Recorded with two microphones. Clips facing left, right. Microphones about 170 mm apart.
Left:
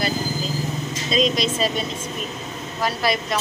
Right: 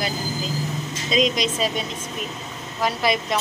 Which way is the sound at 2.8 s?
20° right (ahead or behind).